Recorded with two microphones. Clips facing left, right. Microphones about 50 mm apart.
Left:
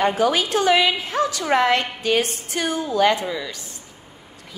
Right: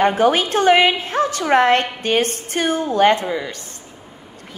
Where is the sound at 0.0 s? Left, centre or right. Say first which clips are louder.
Right 4 dB; right.